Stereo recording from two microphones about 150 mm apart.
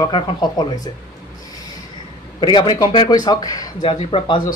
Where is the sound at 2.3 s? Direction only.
30° left (ahead or behind).